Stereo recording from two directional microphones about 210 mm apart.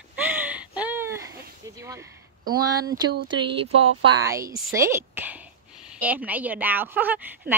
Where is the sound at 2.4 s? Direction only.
45° right (ahead or behind).